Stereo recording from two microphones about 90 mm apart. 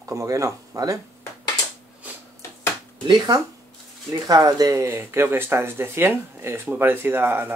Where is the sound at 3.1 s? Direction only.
50° right (ahead or behind).